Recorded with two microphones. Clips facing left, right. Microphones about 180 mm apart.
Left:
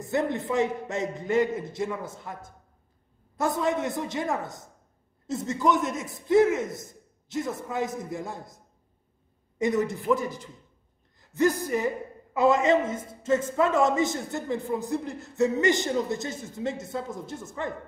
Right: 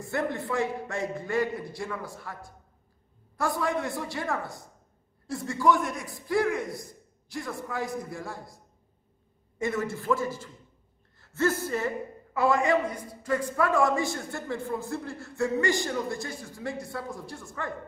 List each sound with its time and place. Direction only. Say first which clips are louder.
0.0 s a man's voice: left 3 dB; 20° left (ahead or behind)